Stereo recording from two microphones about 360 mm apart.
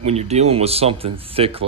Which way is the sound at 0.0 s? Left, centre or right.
Centre.